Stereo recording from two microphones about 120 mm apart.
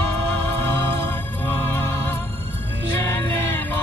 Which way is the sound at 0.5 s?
20° left (ahead or behind).